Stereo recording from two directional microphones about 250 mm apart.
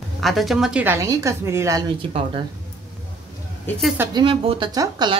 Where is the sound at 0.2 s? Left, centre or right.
Centre.